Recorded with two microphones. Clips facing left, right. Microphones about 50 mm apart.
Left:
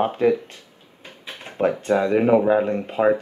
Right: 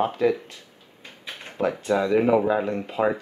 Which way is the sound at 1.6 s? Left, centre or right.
Left.